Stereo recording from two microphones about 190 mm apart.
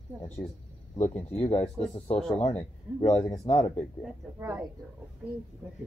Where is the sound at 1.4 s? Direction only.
35° left (ahead or behind).